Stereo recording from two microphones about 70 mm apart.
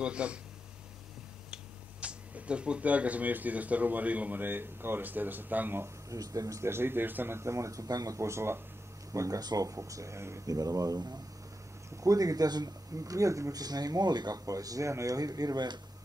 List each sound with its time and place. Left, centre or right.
0.0 s speech: centre
1.5 s speech: centre
6.0 s speech: right
6.7 s a man's voice: right
9.4 s speech: right
10.5 s speech: right
14.4 s speech: right